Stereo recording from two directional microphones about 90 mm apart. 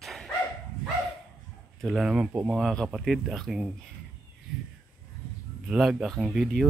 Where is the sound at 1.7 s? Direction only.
Centre (ahead or behind).